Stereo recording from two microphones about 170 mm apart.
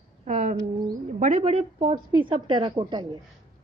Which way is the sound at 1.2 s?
40° right (ahead or behind).